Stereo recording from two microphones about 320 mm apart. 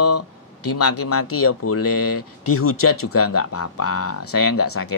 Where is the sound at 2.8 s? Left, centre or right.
Left.